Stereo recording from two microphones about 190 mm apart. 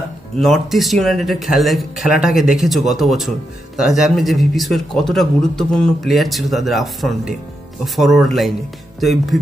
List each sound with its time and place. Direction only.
0.4 s speech: centre (ahead or behind)